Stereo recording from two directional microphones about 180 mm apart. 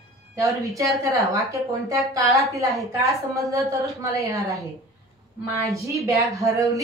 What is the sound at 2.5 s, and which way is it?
A woman's voice, 20° right (ahead or behind).